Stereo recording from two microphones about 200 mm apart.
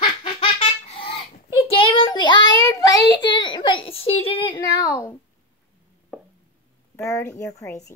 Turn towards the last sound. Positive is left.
turn(degrees=15)  # may be behind; listen again after turning